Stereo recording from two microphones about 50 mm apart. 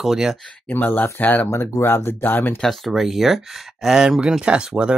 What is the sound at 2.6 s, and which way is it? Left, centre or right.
Speech, centre.